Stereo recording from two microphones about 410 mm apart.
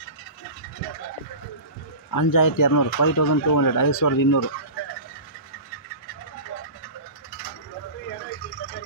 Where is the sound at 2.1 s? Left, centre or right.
Left.